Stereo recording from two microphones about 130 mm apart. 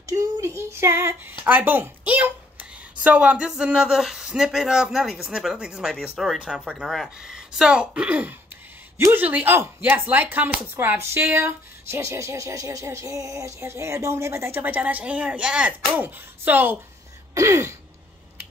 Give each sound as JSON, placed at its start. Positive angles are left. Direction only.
{"t": 0.0, "sound": "child singing", "side_deg": -25}
{"t": 1.4, "sound": "speech", "side_deg": -15}
{"t": 17.3, "sound": "throat clearing", "side_deg": -20}